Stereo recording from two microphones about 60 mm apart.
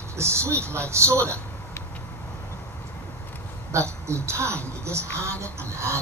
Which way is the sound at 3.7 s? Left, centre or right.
Right.